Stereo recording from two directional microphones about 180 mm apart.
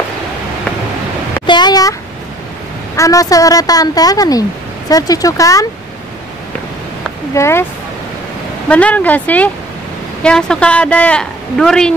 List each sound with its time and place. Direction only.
1.4 s a sound: 25° left (ahead or behind)
3.0 s speech: 20° left (ahead or behind)
7.3 s speech: 15° left (ahead or behind)
8.6 s a woman's voice: 5° left (ahead or behind)